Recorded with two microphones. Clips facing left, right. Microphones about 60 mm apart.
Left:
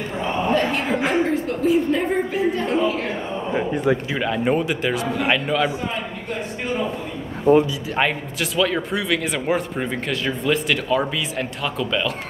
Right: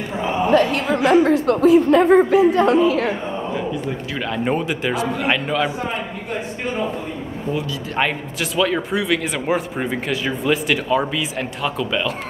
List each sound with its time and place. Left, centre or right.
0.2 s a sound: centre
0.9 s speech: right
4.2 s speech: centre
7.9 s speech: centre